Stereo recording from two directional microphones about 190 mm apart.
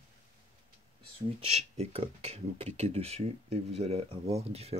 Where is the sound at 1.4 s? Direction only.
35° right (ahead or behind).